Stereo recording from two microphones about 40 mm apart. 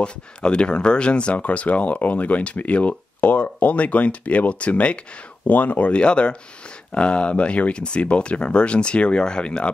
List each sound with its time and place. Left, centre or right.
0.0 s speech: left